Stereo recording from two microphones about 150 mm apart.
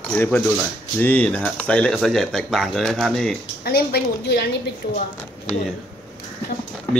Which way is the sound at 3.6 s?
90° left.